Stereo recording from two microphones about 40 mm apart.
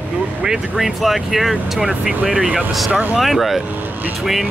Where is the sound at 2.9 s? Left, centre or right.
Right.